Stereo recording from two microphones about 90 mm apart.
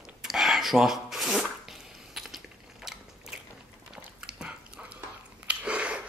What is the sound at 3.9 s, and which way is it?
Dog, 10° right (ahead or behind).